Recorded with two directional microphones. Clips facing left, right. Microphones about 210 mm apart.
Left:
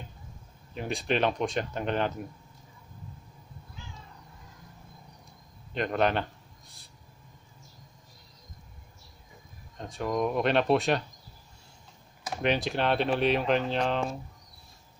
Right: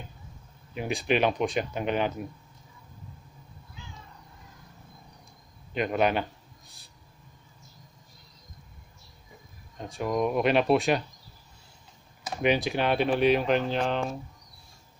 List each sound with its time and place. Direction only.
0.7 s speech: 5° right (ahead or behind)
5.8 s speech: 10° right (ahead or behind)
9.8 s speech: centre (ahead or behind)
12.3 s speech: 5° right (ahead or behind)